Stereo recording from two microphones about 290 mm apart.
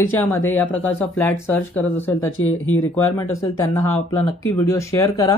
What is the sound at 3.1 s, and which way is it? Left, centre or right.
A man's voice, centre.